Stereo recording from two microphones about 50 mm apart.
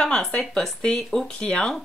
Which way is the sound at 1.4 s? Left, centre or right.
Centre.